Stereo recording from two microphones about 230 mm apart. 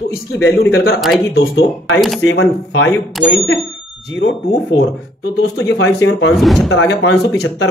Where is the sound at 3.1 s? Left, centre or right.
Centre.